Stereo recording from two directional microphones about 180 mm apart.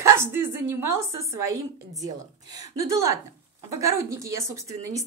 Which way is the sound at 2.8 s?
15° right (ahead or behind).